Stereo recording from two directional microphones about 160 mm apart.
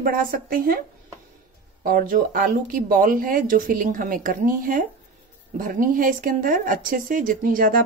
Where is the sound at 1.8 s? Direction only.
60° right (ahead or behind).